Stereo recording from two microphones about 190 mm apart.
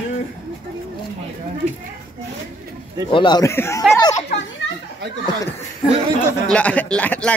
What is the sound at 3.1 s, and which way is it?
A man's voice, 25° left (ahead or behind).